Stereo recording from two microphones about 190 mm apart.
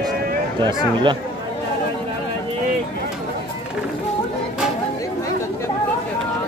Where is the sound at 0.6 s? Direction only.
25° right (ahead or behind).